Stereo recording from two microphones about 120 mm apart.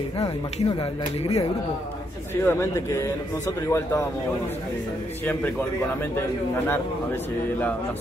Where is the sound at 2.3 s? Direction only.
20° left (ahead or behind).